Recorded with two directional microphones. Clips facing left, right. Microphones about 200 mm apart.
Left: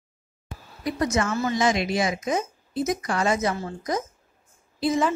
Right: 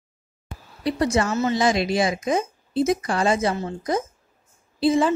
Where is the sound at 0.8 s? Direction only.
30° right (ahead or behind).